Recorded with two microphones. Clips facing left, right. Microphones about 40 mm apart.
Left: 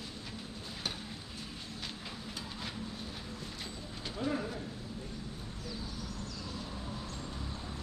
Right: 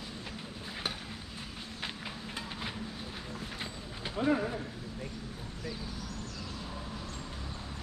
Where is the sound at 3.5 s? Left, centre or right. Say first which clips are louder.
Right 3 dB; right.